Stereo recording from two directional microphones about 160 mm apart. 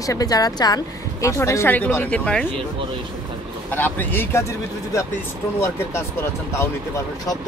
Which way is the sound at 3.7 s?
10° left (ahead or behind).